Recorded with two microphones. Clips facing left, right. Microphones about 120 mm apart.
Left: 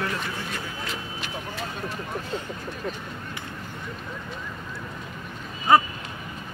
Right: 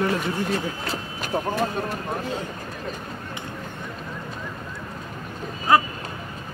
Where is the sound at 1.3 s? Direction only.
45° right (ahead or behind).